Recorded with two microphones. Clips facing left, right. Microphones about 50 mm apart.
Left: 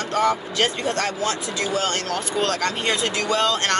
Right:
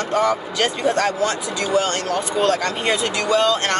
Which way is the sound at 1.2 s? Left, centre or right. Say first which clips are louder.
Right 2 dB; right.